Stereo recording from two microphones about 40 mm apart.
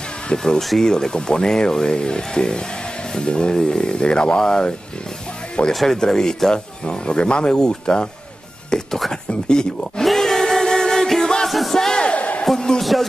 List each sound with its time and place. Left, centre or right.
0.3 s speech: centre
0.6 s speech: centre
0.8 s speech: centre
8.6 s whispering: centre
9.3 s speech: centre
9.9 s a sound: centre
11.4 s music: centre
12.0 s a sound: left
12.5 s speech: centre